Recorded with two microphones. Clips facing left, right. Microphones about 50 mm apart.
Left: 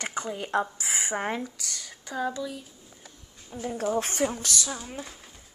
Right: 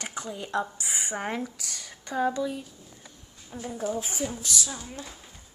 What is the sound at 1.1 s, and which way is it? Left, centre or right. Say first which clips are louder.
Speech: left 1 dB; centre.